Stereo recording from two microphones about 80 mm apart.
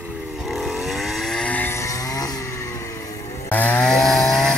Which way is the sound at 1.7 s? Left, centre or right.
Left.